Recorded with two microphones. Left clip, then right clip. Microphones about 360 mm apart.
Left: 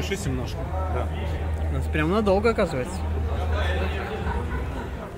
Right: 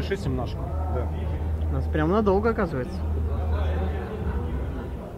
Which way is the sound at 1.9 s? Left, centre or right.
Centre.